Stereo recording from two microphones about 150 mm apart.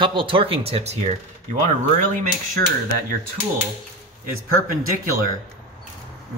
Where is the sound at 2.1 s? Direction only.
60° right (ahead or behind).